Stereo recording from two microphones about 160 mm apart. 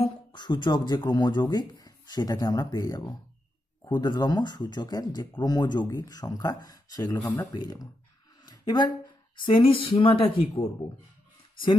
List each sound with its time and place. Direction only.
0.0 s speech: 30° left (ahead or behind)
8.5 s a sound: 25° left (ahead or behind)
9.4 s speech: 35° left (ahead or behind)